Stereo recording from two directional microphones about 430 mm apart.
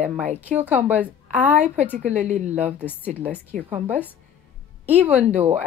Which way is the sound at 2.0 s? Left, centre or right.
Centre.